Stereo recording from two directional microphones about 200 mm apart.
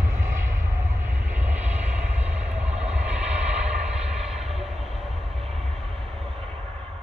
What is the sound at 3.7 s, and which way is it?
Vehicle, 35° right (ahead or behind).